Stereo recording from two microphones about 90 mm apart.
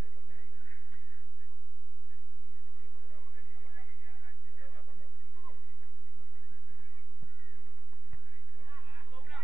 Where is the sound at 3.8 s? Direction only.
55° right (ahead or behind).